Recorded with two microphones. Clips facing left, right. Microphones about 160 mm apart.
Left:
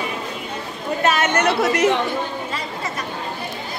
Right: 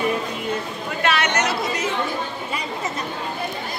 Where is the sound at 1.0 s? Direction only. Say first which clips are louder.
Left 3 dB; 45° left (ahead or behind); by 2.0 s 80° left.